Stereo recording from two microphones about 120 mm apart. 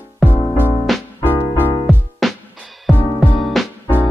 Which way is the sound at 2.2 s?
Centre (ahead or behind).